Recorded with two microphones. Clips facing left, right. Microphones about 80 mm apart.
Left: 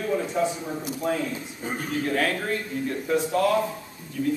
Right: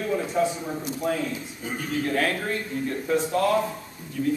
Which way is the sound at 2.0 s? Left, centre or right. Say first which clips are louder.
Even; centre.